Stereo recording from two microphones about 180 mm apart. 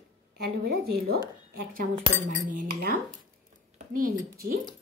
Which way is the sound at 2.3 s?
50° right (ahead or behind).